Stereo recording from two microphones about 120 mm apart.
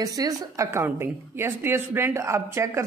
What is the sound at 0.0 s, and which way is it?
A woman's voice, 30° right (ahead or behind).